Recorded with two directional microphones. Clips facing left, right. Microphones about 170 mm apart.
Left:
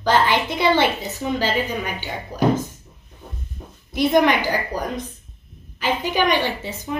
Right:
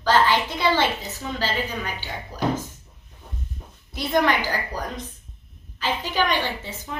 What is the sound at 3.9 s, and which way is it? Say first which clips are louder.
A woman's voice: left 5 dB; 15° left (ahead or behind).